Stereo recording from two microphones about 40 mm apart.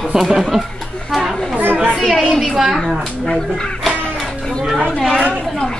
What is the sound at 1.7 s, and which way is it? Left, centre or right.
Children playing, right.